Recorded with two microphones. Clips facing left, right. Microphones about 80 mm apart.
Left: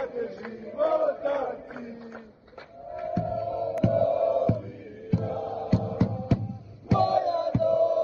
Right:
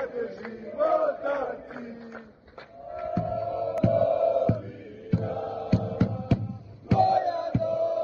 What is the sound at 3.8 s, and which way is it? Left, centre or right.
Music, left.